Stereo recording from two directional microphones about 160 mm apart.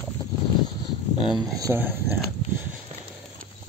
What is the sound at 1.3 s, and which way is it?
Speech, 20° right (ahead or behind).